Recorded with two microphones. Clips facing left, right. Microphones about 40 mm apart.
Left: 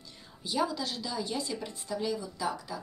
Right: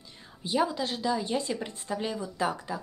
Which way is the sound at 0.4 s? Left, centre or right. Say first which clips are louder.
Right 3 dB; right.